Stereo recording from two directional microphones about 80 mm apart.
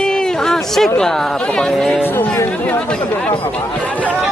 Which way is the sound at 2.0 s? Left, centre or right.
Left.